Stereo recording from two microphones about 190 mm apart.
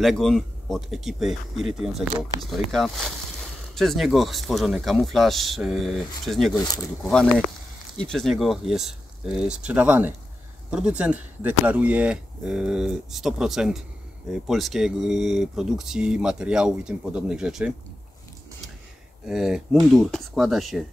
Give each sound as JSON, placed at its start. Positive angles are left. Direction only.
{"t": 0.0, "sound": "speech", "side_deg": 0}
{"t": 6.6, "sound": "speech", "side_deg": 20}
{"t": 7.0, "sound": "speech", "side_deg": 5}
{"t": 19.2, "sound": "speech", "side_deg": -5}